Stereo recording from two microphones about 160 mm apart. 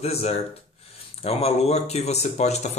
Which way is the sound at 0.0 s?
40° left (ahead or behind).